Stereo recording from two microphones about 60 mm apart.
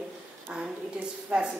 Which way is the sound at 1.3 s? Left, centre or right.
Centre.